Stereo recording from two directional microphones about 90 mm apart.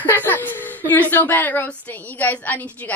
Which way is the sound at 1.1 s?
20° left (ahead or behind).